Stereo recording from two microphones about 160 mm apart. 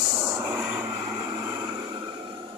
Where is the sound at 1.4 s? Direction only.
30° right (ahead or behind).